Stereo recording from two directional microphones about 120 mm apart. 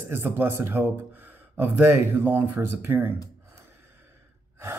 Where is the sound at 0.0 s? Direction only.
20° right (ahead or behind).